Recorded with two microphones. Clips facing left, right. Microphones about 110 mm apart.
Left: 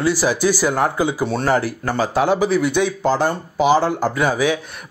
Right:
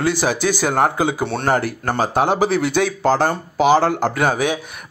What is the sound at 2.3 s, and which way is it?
Speech, 70° right (ahead or behind).